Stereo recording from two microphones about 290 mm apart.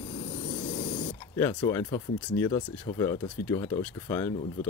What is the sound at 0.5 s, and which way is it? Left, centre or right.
Vehicle, centre.